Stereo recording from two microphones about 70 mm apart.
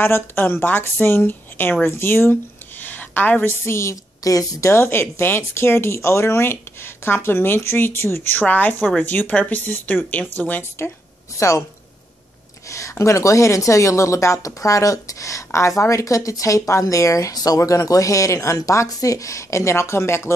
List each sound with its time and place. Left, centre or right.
0.0 s a woman's voice: left
11.3 s a woman's voice: left
12.6 s a woman's voice: left
17.6 s a woman's voice: left